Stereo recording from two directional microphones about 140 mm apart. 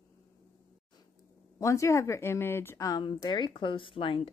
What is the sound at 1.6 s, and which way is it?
A woman's voice, 20° left (ahead or behind).